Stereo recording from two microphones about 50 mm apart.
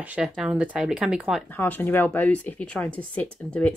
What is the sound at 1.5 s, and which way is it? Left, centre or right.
Speech, left.